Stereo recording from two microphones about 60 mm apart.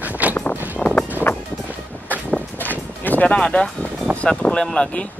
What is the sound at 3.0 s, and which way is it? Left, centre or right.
Music, left.